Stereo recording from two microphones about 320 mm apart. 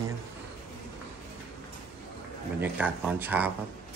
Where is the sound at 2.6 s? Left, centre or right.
Centre.